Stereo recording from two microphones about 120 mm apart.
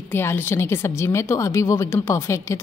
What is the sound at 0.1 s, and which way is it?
A woman's voice, 20° left (ahead or behind).